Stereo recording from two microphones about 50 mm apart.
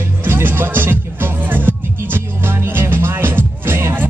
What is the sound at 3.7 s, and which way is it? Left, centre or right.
Music, right.